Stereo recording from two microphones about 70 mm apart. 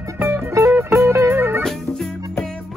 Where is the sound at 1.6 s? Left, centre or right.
Centre.